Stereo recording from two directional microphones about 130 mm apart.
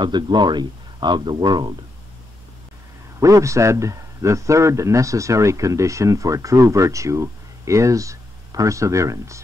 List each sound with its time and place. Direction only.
0.0 s speech: 35° right (ahead or behind)
3.2 s a man's voice: 25° right (ahead or behind)